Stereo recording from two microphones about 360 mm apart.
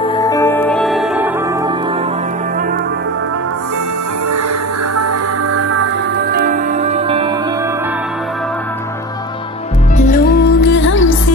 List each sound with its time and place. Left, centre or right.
0.2 s music: centre
6.3 s music: right
9.9 s music: left